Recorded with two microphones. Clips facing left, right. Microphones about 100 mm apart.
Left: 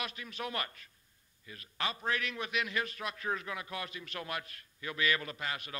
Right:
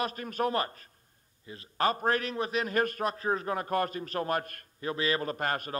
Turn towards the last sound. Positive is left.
turn(degrees=-45)  # may be behind; listen again after turning